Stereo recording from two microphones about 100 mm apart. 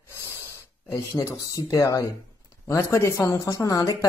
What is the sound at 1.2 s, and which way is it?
Speech, 35° left (ahead or behind).